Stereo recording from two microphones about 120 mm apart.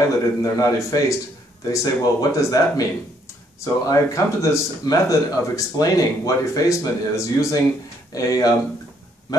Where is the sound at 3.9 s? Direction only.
25° left (ahead or behind).